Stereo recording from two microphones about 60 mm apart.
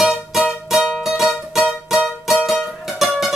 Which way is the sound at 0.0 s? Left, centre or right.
Centre.